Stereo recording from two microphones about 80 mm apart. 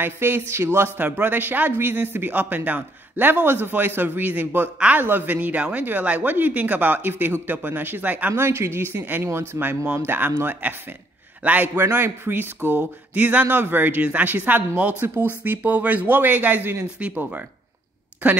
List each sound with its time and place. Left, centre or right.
0.0 s speech: right